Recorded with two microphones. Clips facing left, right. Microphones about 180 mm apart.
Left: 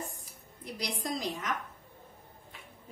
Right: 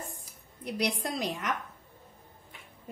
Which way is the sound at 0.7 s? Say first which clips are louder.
Right 7 dB; 65° right (ahead or behind).